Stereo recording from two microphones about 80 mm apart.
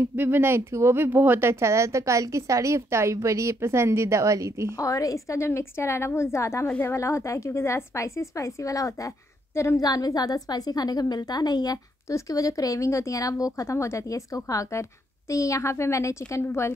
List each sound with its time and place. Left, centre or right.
0.0 s speech: right
4.7 s a woman's voice: left